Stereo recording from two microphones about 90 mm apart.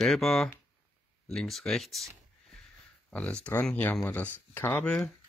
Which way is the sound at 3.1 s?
10° left (ahead or behind).